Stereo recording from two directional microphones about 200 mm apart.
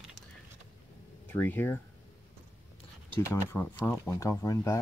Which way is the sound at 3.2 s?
15° left (ahead or behind).